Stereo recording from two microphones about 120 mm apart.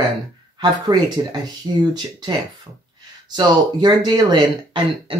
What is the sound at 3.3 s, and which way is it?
Speech, 35° right (ahead or behind).